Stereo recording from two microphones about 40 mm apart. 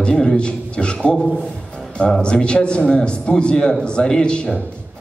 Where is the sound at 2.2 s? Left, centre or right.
Left.